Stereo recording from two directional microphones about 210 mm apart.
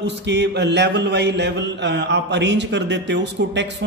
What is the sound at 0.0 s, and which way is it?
A man's voice, 55° right (ahead or behind).